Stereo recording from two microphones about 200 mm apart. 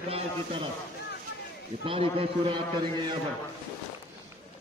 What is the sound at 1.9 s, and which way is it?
A man's voice, 25° right (ahead or behind).